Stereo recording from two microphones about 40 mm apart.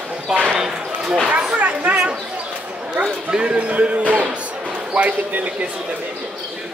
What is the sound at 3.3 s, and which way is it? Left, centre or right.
Speech, right.